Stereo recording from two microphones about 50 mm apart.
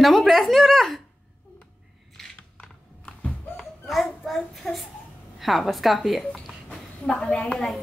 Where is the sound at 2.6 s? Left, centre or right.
Centre.